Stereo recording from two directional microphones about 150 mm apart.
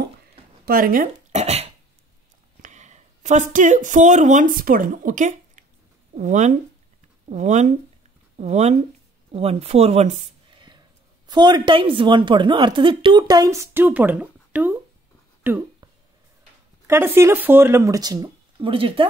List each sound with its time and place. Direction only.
0.7 s speech: 70° right (ahead or behind)
1.3 s dog: 45° right (ahead or behind)
2.6 s speech: 50° right (ahead or behind)
10.5 s a sound: 30° right (ahead or behind)
11.2 s a woman's voice: 30° right (ahead or behind); by 15.6 s 15° right (ahead or behind)
16.8 s a woman's voice: 15° right (ahead or behind); by 19.0 s 35° right (ahead or behind)